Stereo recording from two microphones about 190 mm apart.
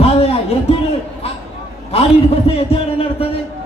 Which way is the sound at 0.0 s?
30° left (ahead or behind).